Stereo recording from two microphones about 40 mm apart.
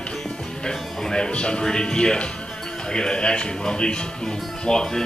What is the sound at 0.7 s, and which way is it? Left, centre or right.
Speech, centre.